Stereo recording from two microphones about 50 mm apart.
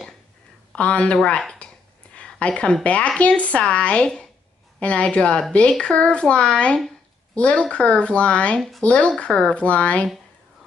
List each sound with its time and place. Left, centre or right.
0.7 s speech: left